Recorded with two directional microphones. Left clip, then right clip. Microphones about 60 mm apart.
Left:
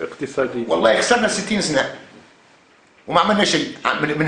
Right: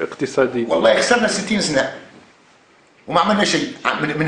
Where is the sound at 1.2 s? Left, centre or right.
Centre.